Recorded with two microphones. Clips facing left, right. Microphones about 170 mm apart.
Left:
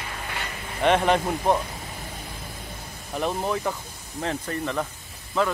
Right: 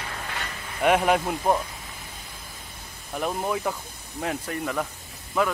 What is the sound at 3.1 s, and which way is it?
Speech, 5° right (ahead or behind).